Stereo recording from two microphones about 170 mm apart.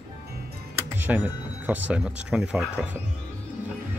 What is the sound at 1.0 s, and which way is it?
Music, 10° right (ahead or behind).